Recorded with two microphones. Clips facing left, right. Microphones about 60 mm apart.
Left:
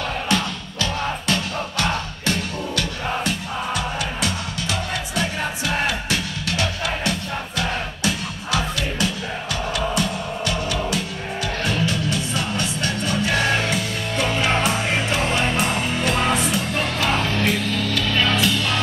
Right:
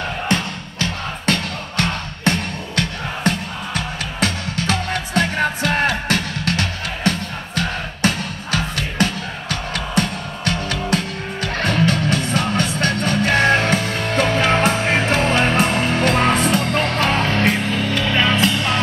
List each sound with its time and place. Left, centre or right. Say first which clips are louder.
0.3 s music: right 1 dB; right